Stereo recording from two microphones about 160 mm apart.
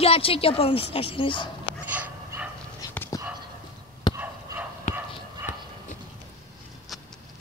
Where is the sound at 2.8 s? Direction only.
25° left (ahead or behind).